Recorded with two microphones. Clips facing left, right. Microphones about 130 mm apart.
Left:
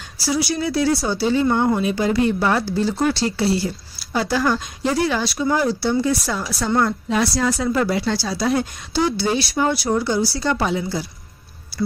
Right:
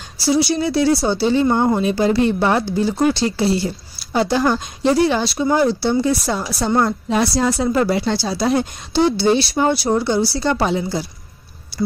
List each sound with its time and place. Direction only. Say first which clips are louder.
0.2 s speech: right 4 dB; 25° right (ahead or behind)